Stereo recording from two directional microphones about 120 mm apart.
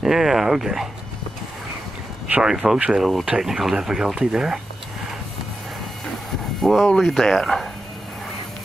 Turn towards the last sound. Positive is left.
turn(degrees=0)  # may be behind; listen again after turning